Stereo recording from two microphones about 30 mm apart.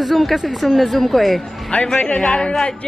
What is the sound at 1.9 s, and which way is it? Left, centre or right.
Speech, left.